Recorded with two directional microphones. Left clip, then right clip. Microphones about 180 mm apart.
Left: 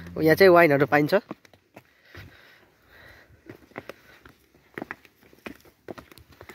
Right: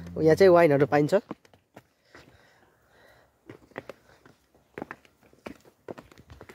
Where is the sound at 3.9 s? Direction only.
50° left (ahead or behind).